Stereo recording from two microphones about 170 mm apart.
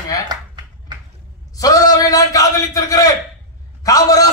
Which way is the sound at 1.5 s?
20° left (ahead or behind).